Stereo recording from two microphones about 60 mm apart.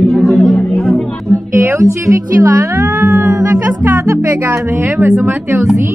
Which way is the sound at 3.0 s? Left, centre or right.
Right.